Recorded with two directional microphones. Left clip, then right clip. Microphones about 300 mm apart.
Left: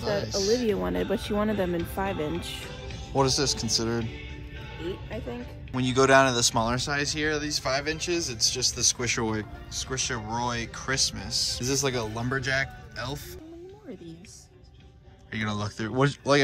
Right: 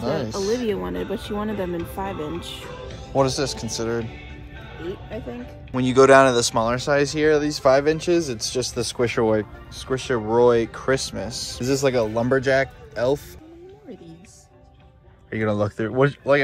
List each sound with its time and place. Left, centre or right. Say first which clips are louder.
0.0 s speech: right 3 dB; centre
3.2 s speech: right 4 dB; centre
3.4 s speech: left 1 dB; centre
5.7 s speech: right 7 dB; centre
15.2 s speech: right 9 dB; centre